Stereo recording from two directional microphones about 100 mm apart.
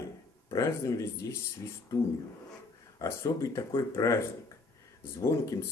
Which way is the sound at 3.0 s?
30° left (ahead or behind).